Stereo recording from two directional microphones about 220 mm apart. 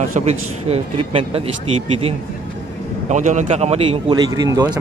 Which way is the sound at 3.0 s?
35° right (ahead or behind).